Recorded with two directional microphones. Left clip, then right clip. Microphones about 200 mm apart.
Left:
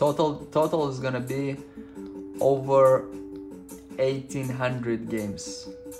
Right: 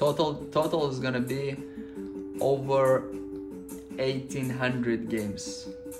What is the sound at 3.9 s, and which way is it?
Speech, 35° left (ahead or behind).